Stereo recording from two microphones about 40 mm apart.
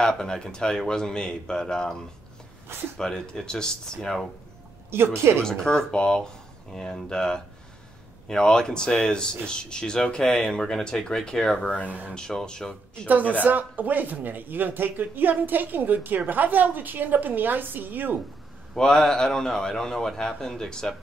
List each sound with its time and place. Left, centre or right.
0.2 s speech: centre
3.0 s speech: centre
4.9 s speech: right
5.4 s speech: centre
13.1 s speech: right
18.8 s speech: centre